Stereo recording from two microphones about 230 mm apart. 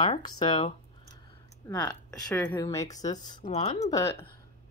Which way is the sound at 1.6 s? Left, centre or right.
Centre.